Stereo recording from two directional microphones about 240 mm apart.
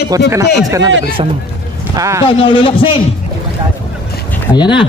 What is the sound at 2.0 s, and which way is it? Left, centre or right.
Speech, centre.